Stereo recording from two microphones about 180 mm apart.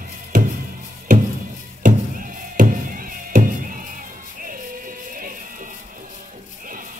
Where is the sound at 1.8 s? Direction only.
45° right (ahead or behind).